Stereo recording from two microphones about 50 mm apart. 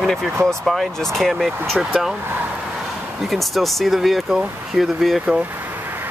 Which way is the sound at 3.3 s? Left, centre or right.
Centre.